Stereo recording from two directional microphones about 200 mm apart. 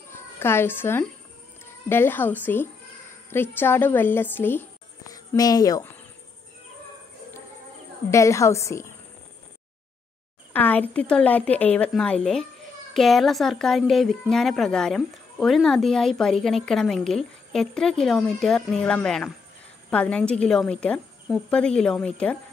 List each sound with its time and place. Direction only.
0.1 s a woman's voice: 10° left (ahead or behind)
8.1 s a woman's voice: 15° left (ahead or behind)
10.5 s a woman's voice: 10° left (ahead or behind)